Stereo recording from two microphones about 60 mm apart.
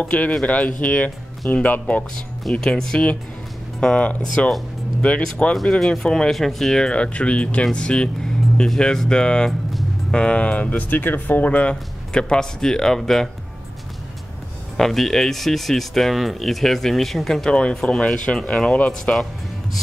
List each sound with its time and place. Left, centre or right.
0.0 s speech: left
2.5 s speech: centre
14.8 s speech: centre
19.1 s speech: centre